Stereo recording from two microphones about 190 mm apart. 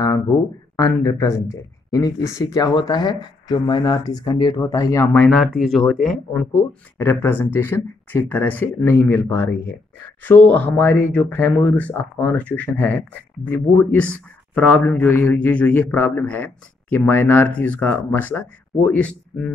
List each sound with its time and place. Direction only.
0.7 s speech: 20° left (ahead or behind)